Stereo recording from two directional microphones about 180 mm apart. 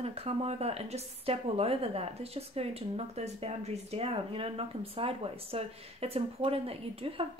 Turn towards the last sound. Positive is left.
turn(degrees=-30)  # may be behind; listen again after turning